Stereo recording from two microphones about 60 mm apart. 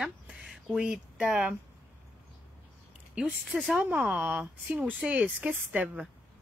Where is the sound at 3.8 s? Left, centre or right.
Right.